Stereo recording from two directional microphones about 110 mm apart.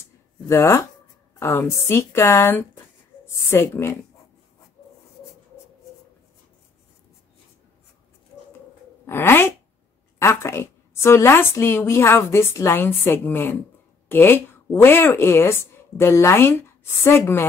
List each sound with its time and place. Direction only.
0.5 s a woman's voice: 25° left (ahead or behind)
9.0 s a woman's voice: 20° left (ahead or behind)